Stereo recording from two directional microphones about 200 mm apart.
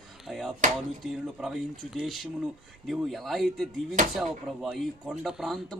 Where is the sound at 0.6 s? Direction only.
40° right (ahead or behind).